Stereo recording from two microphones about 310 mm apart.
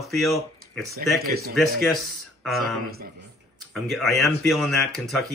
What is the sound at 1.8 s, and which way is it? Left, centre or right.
Speech, centre.